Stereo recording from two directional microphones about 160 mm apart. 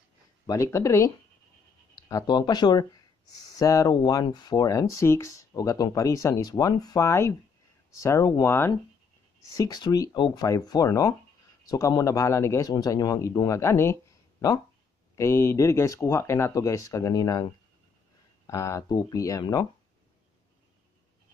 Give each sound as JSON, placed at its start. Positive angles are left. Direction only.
{"t": 0.5, "sound": "speech", "side_deg": 20}
{"t": 9.6, "sound": "speech", "side_deg": 25}
{"t": 15.1, "sound": "speech", "side_deg": 15}
{"t": 18.5, "sound": "speech", "side_deg": 20}